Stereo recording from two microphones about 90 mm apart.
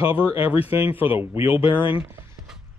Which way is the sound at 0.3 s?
20° right (ahead or behind).